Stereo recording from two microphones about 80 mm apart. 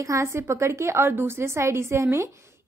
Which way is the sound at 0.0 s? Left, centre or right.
Right.